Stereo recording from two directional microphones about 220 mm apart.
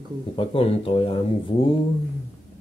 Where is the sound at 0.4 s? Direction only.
25° left (ahead or behind).